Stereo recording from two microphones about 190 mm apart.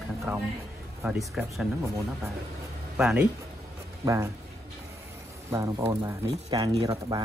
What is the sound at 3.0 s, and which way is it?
Speech, 5° right (ahead or behind).